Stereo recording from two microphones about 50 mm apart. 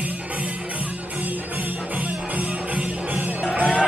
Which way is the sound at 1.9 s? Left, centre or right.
Right.